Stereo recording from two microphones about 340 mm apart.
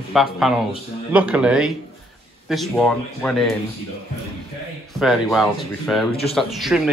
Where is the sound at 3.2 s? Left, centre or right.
Centre.